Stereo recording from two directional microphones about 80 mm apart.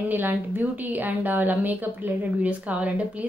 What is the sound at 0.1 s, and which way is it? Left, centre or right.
A woman's voice, right.